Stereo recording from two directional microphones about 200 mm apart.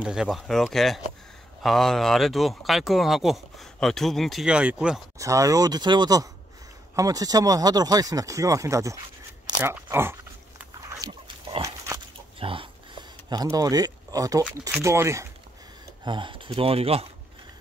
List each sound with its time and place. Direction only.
0.0 s speech: 5° right (ahead or behind)
5.2 s speech: 15° right (ahead or behind)
10.6 s dog: 20° right (ahead or behind)
12.4 s a sound: 25° right (ahead or behind)
14.4 s speech: 10° right (ahead or behind); by 17.1 s 30° right (ahead or behind)